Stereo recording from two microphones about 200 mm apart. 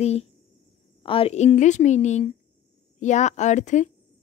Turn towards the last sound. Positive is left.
turn(degrees=35)  # may be behind; listen again after turning